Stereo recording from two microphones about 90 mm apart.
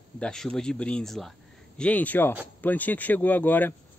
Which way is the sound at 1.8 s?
15° left (ahead or behind).